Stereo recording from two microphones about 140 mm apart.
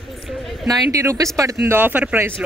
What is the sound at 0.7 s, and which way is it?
Speech, 25° right (ahead or behind).